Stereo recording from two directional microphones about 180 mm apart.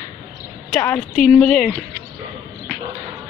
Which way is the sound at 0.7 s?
10° left (ahead or behind).